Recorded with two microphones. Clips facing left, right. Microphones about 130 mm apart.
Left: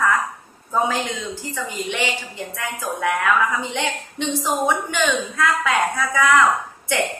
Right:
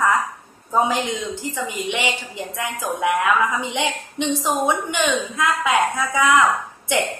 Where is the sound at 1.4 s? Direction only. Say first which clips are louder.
Right 2 dB; 15° right (ahead or behind).